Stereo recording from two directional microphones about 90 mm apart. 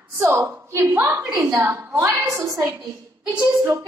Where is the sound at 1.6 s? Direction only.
25° right (ahead or behind).